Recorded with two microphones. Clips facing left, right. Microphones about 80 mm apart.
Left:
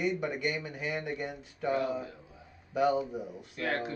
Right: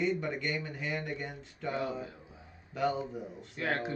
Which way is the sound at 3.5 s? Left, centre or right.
Right.